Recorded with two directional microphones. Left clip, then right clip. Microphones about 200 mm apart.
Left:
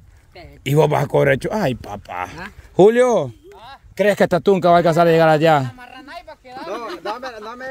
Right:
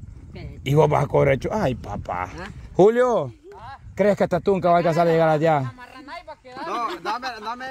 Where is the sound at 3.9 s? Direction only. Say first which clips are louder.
Left 4 dB; 35° left (ahead or behind).